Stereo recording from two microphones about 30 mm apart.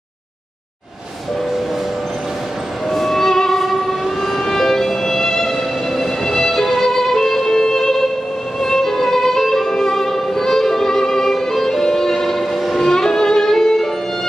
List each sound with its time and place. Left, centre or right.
2.9 s music: centre
8.5 s violin: centre
12.9 s music: centre